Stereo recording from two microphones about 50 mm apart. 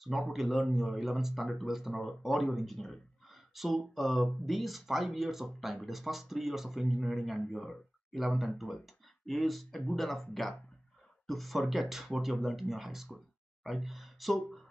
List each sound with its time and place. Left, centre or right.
0.0 s speech: centre